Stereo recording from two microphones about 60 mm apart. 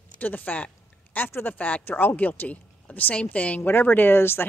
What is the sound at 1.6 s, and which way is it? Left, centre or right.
Speech, left.